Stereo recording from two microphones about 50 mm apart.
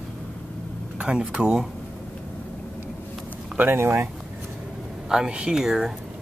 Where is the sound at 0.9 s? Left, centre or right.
Right.